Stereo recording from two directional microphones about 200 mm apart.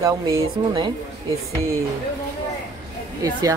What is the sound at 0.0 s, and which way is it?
Speech, 15° right (ahead or behind).